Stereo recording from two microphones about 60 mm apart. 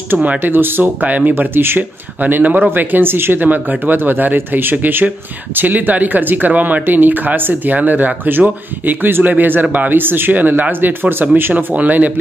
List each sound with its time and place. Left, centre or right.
0.2 s speech: right
1.3 s speech: right
11.5 s speech: right